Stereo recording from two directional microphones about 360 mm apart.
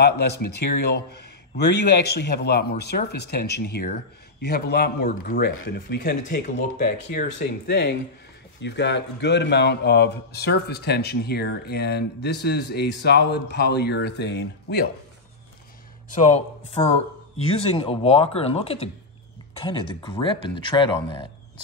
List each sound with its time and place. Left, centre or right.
0.0 s speech: left
16.1 s speech: centre